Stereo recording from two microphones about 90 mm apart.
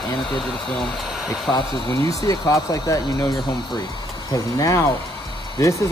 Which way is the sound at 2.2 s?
40° left (ahead or behind).